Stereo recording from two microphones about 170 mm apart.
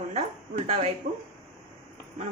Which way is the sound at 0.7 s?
45° right (ahead or behind).